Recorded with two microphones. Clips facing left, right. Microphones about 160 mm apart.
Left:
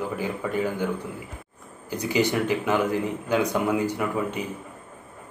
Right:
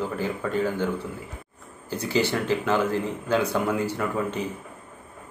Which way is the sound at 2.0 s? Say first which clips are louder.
Left 1 dB; 15° left (ahead or behind).